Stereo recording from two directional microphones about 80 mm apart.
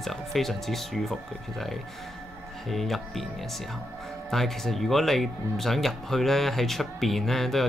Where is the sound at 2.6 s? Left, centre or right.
Centre.